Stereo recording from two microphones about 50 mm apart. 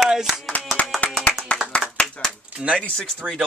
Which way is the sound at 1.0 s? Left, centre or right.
Left.